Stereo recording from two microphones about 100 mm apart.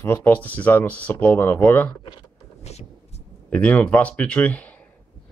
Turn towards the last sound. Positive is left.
turn(degrees=15)  # may be behind; listen again after turning